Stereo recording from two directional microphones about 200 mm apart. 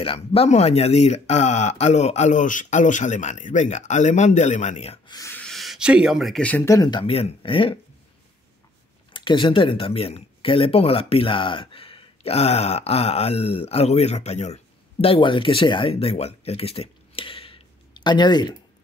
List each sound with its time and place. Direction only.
0.0 s speech: 30° left (ahead or behind)
9.1 s speech: 25° left (ahead or behind)